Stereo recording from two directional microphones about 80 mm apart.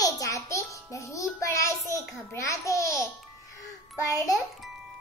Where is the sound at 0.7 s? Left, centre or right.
Left.